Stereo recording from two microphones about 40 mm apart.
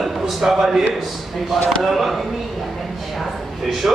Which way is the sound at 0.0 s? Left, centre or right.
Centre.